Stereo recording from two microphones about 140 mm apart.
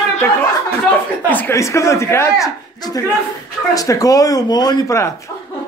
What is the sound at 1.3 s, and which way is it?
A man's voice, 15° left (ahead or behind).